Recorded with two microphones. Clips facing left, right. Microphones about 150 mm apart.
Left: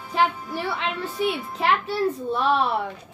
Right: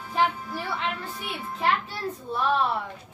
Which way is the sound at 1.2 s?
85° left.